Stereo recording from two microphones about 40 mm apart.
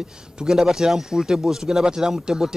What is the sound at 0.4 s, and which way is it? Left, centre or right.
Speech, centre.